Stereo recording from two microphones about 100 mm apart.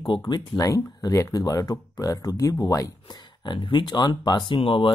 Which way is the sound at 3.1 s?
50° left (ahead or behind).